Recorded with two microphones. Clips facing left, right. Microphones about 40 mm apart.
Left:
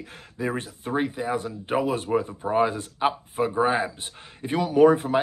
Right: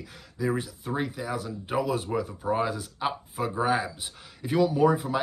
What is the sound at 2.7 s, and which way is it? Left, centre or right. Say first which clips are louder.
Speech: left 5 dB; left.